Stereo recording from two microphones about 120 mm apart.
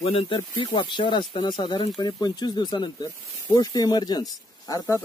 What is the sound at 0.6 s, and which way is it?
Speech, 40° left (ahead or behind).